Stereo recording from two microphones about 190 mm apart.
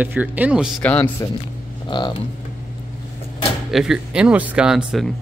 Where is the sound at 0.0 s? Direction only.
10° right (ahead or behind).